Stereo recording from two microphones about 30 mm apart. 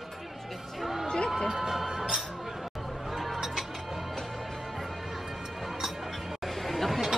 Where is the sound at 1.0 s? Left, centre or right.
Left.